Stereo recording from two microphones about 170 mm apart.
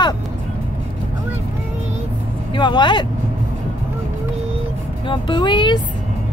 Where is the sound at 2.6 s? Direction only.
25° left (ahead or behind).